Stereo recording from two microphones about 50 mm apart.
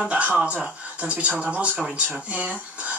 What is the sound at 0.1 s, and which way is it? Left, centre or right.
Speech, right.